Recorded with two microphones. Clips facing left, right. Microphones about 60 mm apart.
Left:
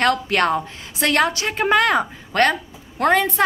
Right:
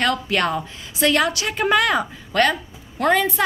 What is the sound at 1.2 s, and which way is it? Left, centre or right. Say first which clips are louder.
A woman's voice: left 1 dB; left.